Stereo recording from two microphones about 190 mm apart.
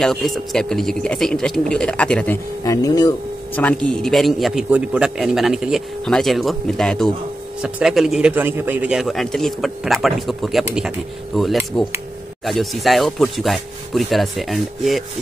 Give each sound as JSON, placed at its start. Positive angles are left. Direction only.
{"t": 0.0, "sound": "a man's voice", "side_deg": 0}
{"t": 2.6, "sound": "speech", "side_deg": 20}
{"t": 3.5, "sound": "a man's voice", "side_deg": 5}